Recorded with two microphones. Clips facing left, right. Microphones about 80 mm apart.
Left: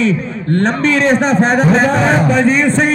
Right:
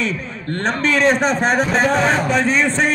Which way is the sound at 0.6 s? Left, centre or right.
Centre.